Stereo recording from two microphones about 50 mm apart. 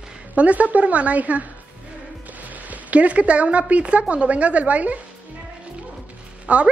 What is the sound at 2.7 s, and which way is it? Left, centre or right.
A woman's voice, right.